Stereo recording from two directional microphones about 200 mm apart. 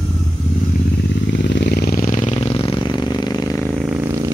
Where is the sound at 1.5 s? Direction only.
55° left (ahead or behind); by 3.7 s 15° left (ahead or behind).